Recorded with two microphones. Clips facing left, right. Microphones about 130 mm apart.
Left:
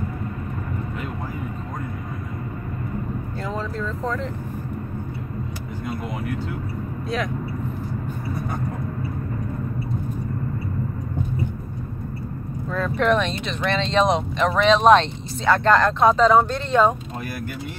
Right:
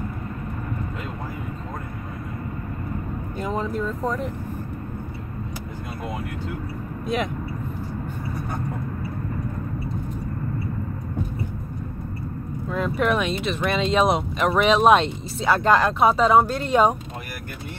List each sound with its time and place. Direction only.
3.4 s speech: 15° right (ahead or behind)
12.7 s speech: 10° right (ahead or behind)